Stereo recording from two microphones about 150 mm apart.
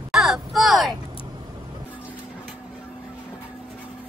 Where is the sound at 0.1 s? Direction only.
Centre (ahead or behind).